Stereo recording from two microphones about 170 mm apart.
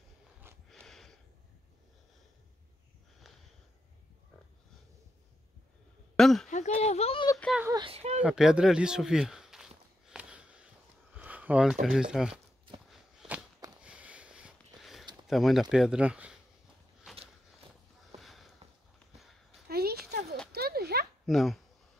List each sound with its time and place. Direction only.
0.7 s a sound: centre (ahead or behind)
6.1 s a sound: centre (ahead or behind)
6.5 s speech: 40° left (ahead or behind)
7.6 s speech: 25° right (ahead or behind)
8.2 s walk: 5° right (ahead or behind)
11.1 s speech: 10° right (ahead or behind)
12.9 s walk: centre (ahead or behind)
13.8 s a sound: 5° right (ahead or behind)
15.2 s speech: centre (ahead or behind)
18.2 s sniff: centre (ahead or behind)
19.7 s a sound: 65° right (ahead or behind)
21.3 s speech: centre (ahead or behind)